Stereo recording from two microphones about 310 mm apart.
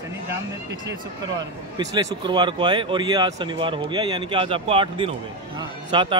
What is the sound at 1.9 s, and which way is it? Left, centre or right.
Speech, centre.